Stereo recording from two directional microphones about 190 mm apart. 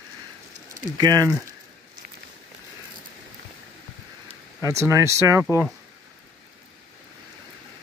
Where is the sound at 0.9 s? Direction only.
20° right (ahead or behind).